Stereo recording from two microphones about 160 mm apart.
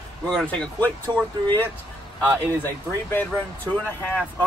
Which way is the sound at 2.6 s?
10° left (ahead or behind).